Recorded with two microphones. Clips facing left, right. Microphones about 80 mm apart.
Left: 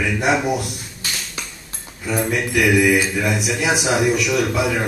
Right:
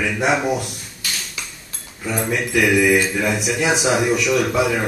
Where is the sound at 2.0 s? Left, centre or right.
Centre.